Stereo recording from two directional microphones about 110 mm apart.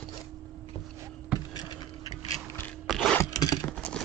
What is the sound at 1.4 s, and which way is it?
Clock, 35° left (ahead or behind).